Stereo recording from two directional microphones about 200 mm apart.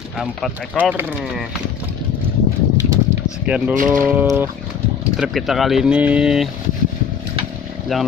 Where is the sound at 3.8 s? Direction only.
10° right (ahead or behind).